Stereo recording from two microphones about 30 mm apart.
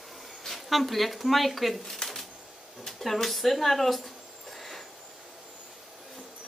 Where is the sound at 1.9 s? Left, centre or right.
Centre.